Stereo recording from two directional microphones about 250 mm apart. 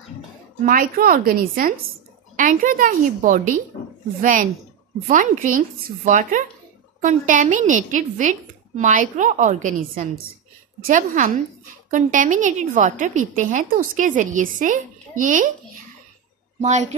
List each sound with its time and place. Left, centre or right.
0.7 s a woman's voice: right